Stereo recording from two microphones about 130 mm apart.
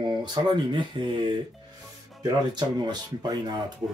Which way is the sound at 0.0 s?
35° right (ahead or behind).